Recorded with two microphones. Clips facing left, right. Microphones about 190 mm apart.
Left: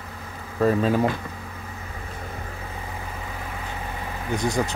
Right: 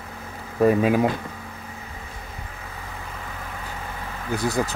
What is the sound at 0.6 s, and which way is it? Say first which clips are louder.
Speech: right 2 dB; 10° right (ahead or behind).